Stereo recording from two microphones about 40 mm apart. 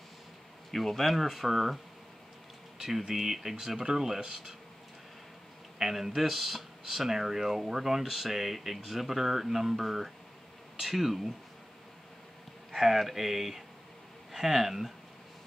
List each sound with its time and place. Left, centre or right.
0.7 s speech: centre
2.8 s speech: centre
5.8 s speech: centre
12.7 s speech: centre